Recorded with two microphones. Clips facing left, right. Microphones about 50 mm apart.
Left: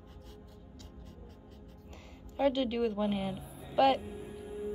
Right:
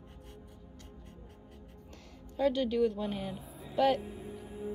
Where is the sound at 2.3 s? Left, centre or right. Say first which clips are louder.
Even; centre.